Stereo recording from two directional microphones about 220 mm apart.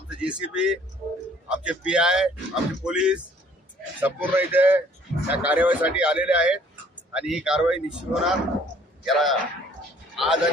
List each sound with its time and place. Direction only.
0.2 s a man's voice: 5° right (ahead or behind)